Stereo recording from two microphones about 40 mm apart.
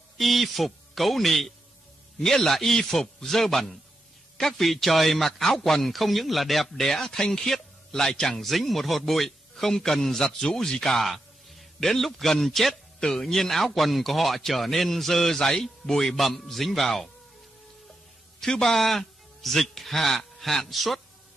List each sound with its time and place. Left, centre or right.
0.2 s a man's voice: centre
8.5 s a man's voice: centre
18.4 s a man's voice: centre
18.7 s a man's voice: centre